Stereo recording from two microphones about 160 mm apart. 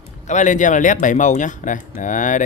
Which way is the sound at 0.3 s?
50° left (ahead or behind).